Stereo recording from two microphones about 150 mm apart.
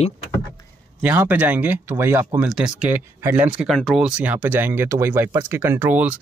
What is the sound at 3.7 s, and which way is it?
Speech, centre (ahead or behind).